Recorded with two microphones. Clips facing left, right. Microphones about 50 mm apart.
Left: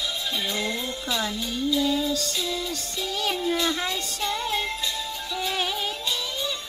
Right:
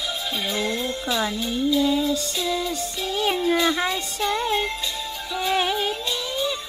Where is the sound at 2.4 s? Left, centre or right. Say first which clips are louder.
Right 4 dB; centre.